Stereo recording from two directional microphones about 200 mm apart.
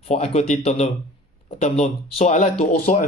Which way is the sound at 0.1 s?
30° left (ahead or behind).